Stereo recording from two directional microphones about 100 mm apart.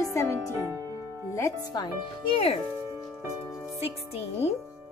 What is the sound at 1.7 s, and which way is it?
Speech, 50° left (ahead or behind).